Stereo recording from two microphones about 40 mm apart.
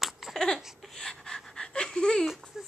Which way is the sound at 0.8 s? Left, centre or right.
Centre.